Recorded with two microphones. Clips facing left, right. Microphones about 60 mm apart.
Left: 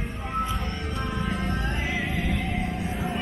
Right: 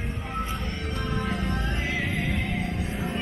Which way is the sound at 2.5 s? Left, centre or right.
Left.